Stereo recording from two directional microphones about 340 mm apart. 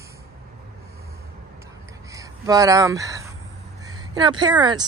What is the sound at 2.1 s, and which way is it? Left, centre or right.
Speech, centre.